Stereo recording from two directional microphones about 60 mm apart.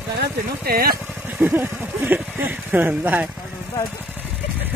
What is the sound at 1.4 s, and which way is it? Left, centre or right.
Speech, right.